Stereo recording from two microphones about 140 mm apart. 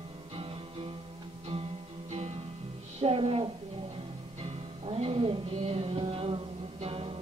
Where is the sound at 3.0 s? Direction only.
45° right (ahead or behind).